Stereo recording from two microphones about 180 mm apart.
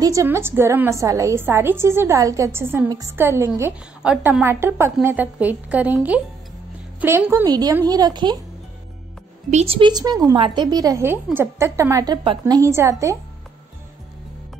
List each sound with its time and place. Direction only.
0.0 s a woman's voice: 15° right (ahead or behind)
9.5 s a woman's voice: 35° right (ahead or behind); by 13.2 s 15° right (ahead or behind)